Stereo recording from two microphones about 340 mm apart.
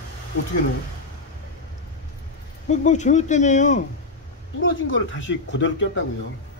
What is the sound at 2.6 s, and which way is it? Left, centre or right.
Speech, left.